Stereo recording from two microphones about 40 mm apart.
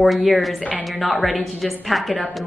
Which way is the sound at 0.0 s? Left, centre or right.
Centre.